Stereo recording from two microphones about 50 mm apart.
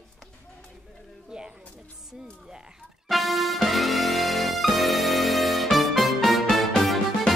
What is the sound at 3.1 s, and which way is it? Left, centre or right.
Music, centre.